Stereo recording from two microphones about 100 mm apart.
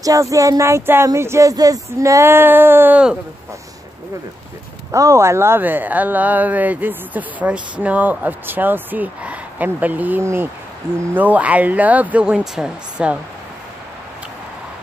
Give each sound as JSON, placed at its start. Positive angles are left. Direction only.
{"t": 0.0, "sound": "speech", "side_deg": -35}
{"t": 4.9, "sound": "speech", "side_deg": -30}